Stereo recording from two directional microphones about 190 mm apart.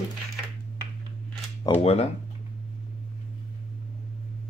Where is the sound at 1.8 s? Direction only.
30° left (ahead or behind).